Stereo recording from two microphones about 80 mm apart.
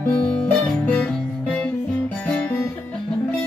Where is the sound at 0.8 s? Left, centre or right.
Centre.